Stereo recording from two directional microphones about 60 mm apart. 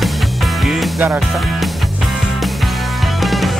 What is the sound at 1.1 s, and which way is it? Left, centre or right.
Speech, centre.